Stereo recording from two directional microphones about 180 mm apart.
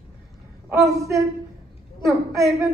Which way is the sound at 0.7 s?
15° right (ahead or behind).